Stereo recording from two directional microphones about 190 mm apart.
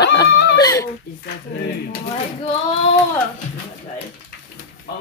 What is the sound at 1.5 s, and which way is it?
Speech, 55° left (ahead or behind).